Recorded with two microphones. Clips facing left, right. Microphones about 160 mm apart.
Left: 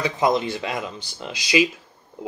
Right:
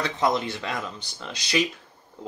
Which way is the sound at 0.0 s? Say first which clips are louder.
Left 3 dB; 15° left (ahead or behind).